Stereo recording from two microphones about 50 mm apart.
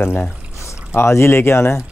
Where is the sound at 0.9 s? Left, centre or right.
Left.